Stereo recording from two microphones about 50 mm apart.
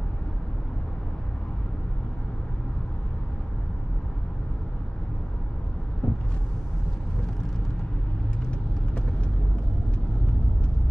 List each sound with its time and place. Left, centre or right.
6.0 s vehicle: left